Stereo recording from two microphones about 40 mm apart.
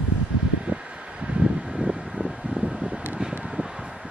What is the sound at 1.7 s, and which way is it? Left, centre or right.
Wind, centre.